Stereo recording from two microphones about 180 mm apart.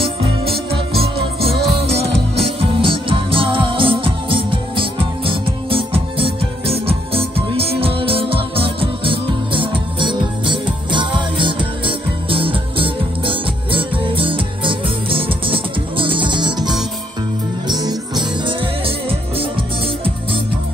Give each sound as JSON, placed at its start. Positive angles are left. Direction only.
{"t": 0.0, "sound": "music", "side_deg": -30}